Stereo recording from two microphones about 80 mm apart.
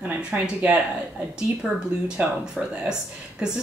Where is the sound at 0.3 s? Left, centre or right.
Centre.